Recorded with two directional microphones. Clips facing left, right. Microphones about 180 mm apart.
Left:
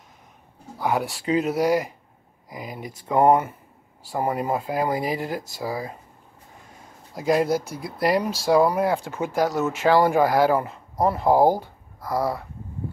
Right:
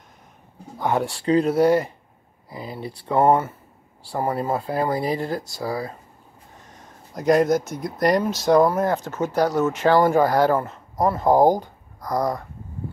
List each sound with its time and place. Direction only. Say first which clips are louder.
0.7 s speech: right 2 dB; 10° left (ahead or behind)
7.2 s speech: right 3 dB; 5° left (ahead or behind)